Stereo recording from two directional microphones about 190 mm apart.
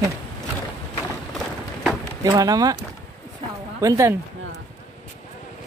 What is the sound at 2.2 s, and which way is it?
Speech, 20° right (ahead or behind).